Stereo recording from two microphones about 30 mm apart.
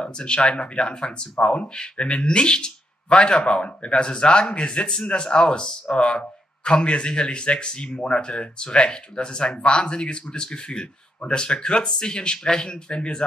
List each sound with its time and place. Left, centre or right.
0.0 s speech: left
3.4 s speech: left